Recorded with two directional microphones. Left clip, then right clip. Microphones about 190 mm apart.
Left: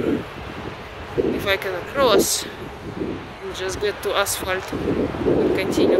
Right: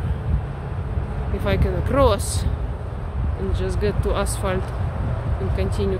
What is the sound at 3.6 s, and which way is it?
Speech, centre (ahead or behind).